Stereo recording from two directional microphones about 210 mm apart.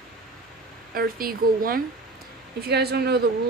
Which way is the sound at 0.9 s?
45° right (ahead or behind).